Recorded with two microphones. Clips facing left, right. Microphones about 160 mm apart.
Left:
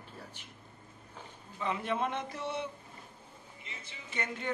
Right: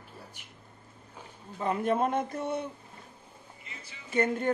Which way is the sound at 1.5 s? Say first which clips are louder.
Right 6 dB; 45° right (ahead or behind).